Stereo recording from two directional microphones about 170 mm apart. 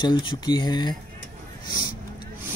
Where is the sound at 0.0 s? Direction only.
30° left (ahead or behind).